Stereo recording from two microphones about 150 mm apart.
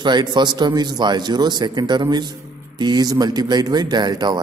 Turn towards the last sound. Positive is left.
turn(degrees=-30)  # may be behind; listen again after turning